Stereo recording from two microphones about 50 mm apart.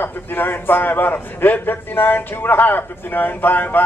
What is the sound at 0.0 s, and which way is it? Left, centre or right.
A man's voice, left.